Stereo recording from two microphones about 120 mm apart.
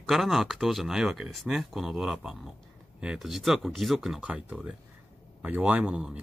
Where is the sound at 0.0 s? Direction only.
Centre (ahead or behind).